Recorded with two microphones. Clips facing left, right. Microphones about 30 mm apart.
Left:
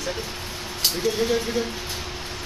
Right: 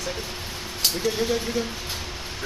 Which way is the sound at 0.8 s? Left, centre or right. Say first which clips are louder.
Left 1 dB; centre.